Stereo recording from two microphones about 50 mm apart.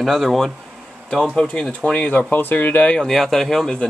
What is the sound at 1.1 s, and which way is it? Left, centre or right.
Speech, centre.